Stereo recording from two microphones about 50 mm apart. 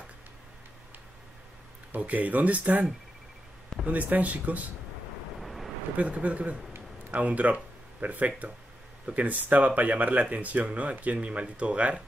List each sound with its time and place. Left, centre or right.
2.0 s speech: right
5.4 s vehicle: centre
5.9 s speech: right